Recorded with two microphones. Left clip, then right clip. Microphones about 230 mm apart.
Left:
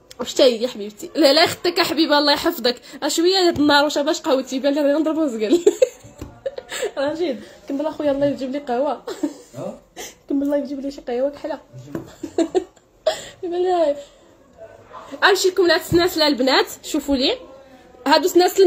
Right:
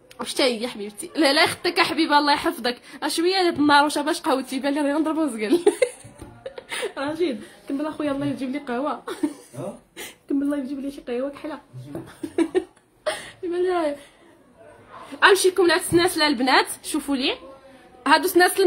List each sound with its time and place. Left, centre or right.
0.2 s a woman's voice: centre
6.5 s a sound: centre
7.8 s a woman's voice: centre
12.4 s cough: centre
13.5 s speech: centre
15.5 s a woman's voice: centre